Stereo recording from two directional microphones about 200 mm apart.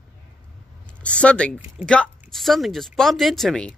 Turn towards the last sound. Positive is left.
turn(degrees=5)  # may be behind; listen again after turning